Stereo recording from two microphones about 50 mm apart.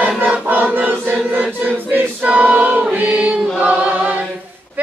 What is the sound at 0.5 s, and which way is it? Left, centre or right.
Choir, right.